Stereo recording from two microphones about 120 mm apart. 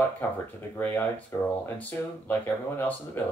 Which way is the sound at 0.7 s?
15° left (ahead or behind).